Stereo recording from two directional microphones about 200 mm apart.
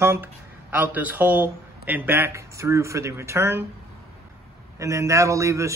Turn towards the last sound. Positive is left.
turn(degrees=-15)  # may be behind; listen again after turning